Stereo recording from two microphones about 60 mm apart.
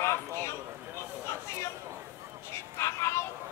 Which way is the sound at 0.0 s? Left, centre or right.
Left.